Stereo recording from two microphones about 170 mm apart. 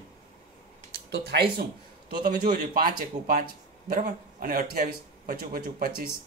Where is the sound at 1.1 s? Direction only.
70° right (ahead or behind).